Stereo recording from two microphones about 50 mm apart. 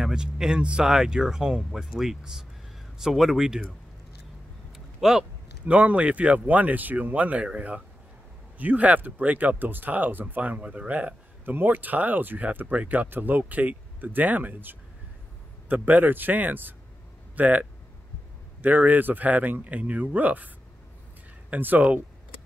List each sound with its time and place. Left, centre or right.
0.1 s speech: centre
4.7 s a sound: centre
5.7 s speech: right